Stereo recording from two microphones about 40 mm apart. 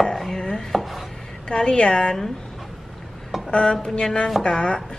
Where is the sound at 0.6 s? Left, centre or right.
Centre.